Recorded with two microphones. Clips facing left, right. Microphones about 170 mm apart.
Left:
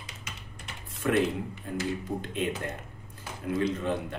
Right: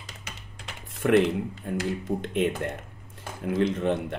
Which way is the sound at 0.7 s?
70° right (ahead or behind).